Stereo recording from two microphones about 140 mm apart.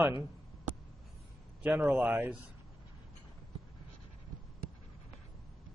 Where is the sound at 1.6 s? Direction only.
10° right (ahead or behind).